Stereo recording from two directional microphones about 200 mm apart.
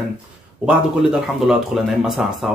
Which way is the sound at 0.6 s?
5° right (ahead or behind).